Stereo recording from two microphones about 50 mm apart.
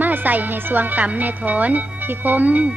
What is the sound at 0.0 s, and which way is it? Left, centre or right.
Speech, right.